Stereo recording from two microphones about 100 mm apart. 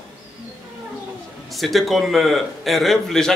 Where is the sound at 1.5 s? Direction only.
Centre (ahead or behind).